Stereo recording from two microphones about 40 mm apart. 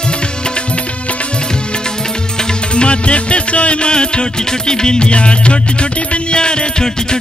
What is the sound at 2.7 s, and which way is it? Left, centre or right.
Music, left.